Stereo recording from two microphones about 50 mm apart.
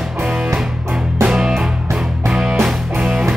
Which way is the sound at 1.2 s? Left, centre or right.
Centre.